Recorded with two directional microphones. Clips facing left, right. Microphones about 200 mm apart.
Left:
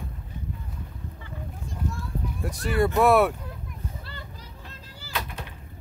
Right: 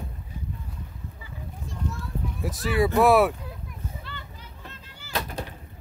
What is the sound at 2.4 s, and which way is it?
Speech, centre (ahead or behind).